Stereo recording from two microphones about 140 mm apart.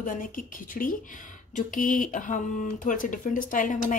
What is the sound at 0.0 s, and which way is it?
A woman's voice, 75° left (ahead or behind).